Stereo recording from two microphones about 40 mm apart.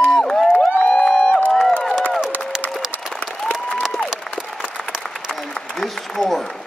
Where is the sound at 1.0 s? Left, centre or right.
Centre.